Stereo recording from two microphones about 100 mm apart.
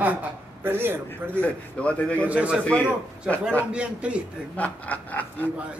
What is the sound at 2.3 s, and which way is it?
Speech, 10° right (ahead or behind).